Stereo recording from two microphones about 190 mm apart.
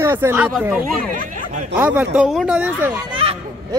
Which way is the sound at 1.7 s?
5° right (ahead or behind).